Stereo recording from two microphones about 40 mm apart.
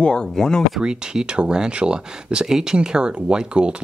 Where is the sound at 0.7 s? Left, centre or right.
Centre.